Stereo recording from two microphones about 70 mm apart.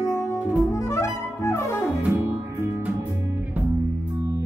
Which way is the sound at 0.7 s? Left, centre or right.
Left.